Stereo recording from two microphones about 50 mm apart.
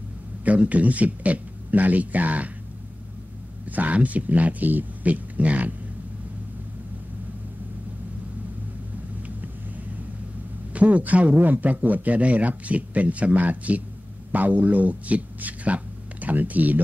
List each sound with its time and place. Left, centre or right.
0.4 s a man's voice: right
3.6 s a man's voice: right
10.7 s a man's voice: right